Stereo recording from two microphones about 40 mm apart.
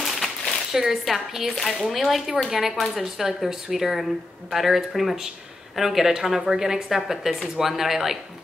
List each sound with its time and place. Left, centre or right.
0.0 s a sound: centre
0.7 s a woman's voice: centre
7.6 s speech: centre